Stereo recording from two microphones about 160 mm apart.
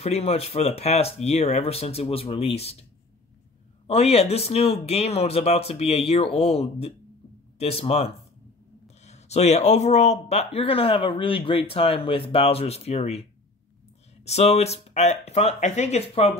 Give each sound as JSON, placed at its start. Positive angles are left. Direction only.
{"t": 0.0, "sound": "speech", "side_deg": 40}
{"t": 3.8, "sound": "speech", "side_deg": 40}